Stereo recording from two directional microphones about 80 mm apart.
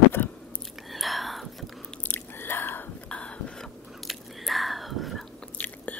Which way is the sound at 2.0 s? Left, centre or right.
Left.